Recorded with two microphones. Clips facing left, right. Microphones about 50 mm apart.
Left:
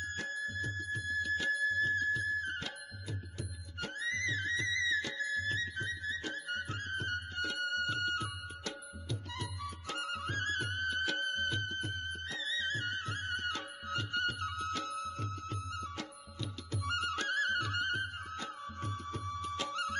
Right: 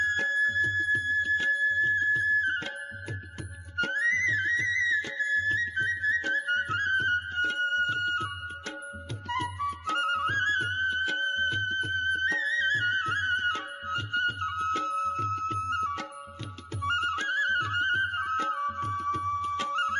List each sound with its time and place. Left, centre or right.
0.0 s music: right
3.7 s music: right
9.3 s music: right